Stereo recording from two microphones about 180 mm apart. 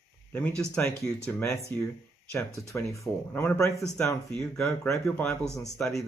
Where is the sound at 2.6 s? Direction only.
15° left (ahead or behind).